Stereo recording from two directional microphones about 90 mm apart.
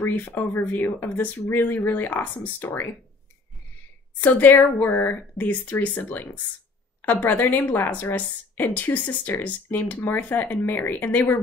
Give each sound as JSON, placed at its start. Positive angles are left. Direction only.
{"t": 0.1, "sound": "a woman's voice", "side_deg": 20}
{"t": 4.2, "sound": "a woman's voice", "side_deg": 20}